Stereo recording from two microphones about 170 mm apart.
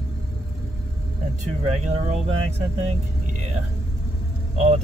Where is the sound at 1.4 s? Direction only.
45° right (ahead or behind).